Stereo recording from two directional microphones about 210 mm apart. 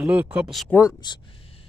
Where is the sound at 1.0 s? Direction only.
20° left (ahead or behind).